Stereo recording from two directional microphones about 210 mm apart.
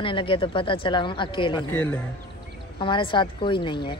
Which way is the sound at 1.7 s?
5° left (ahead or behind).